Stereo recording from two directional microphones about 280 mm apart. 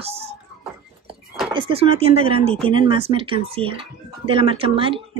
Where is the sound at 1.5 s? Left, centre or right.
Centre.